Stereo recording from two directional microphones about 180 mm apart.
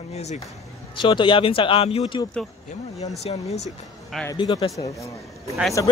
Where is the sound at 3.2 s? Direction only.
35° left (ahead or behind).